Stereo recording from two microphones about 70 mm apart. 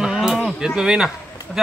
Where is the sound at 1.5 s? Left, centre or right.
Centre.